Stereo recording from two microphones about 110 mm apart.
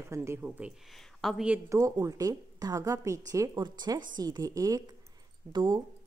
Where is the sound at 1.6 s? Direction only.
30° right (ahead or behind).